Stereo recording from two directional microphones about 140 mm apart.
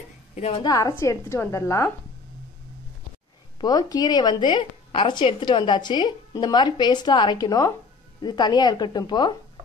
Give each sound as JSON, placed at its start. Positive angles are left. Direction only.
{"t": 0.3, "sound": "a sound", "side_deg": 50}
{"t": 0.6, "sound": "a woman's voice", "side_deg": 25}
{"t": 3.6, "sound": "a woman's voice", "side_deg": 30}